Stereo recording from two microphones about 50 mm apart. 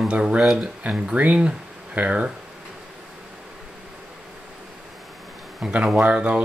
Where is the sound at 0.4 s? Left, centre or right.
Centre.